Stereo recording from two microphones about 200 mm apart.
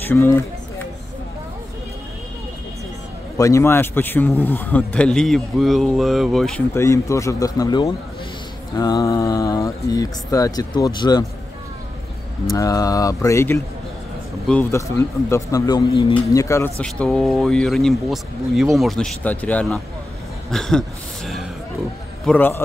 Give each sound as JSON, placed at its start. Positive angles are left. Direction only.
{"t": 0.1, "sound": "speech", "side_deg": 10}
{"t": 3.3, "sound": "speech", "side_deg": 15}
{"t": 6.7, "sound": "speech", "side_deg": 15}
{"t": 12.4, "sound": "speech", "side_deg": 15}
{"t": 22.2, "sound": "a man's voice", "side_deg": 10}